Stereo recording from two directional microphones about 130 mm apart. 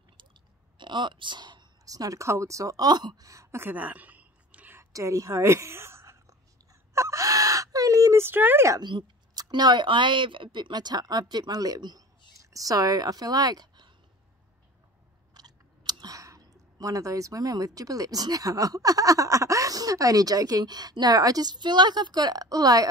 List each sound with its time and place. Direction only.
0.2 s a sound: 35° right (ahead or behind); by 8.8 s 20° right (ahead or behind)
8.8 s speech: 35° right (ahead or behind)
15.3 s speech: 30° right (ahead or behind)